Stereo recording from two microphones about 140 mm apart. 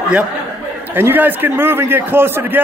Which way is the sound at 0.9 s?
15° right (ahead or behind).